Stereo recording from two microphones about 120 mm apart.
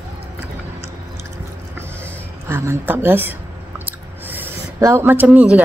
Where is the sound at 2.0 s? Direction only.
20° right (ahead or behind).